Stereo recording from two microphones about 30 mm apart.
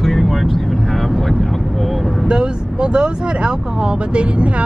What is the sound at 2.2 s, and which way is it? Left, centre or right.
Speech, right.